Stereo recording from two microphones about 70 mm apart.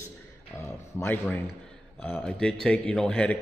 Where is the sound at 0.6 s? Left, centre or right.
Left.